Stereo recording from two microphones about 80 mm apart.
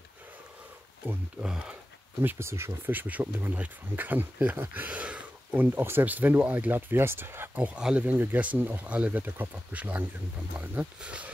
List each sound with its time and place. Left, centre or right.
1.0 s speech: right
1.4 s speech: centre
2.2 s speech: right
7.5 s speech: centre